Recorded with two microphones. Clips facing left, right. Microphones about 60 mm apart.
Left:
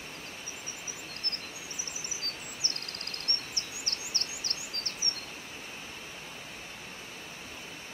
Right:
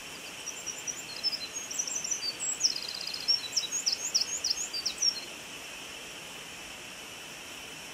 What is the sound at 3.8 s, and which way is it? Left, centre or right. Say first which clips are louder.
Crow: left 1 dB; left.